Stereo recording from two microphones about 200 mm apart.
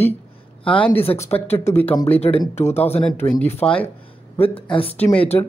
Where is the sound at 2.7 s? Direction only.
30° left (ahead or behind).